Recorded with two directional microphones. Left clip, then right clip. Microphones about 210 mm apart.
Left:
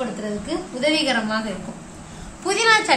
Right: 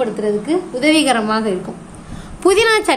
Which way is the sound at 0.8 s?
55° right (ahead or behind).